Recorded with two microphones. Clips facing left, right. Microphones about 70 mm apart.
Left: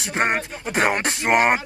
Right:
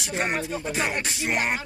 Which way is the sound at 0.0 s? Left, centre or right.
Left.